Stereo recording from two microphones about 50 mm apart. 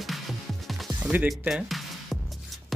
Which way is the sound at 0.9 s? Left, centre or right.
Right.